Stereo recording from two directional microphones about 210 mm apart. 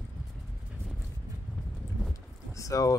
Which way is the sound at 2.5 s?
15° left (ahead or behind).